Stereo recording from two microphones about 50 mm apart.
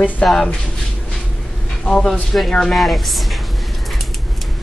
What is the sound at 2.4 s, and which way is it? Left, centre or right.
Speech, centre.